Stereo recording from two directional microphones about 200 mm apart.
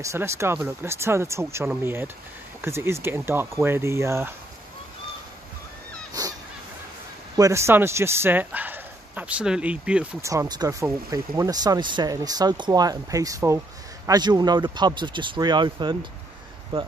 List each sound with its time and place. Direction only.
0.0 s speech: 15° right (ahead or behind)
7.3 s speech: 15° right (ahead or behind)
10.3 s speech: 15° right (ahead or behind)